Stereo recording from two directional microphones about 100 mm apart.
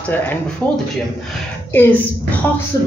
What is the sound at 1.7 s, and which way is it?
Speech, 20° left (ahead or behind).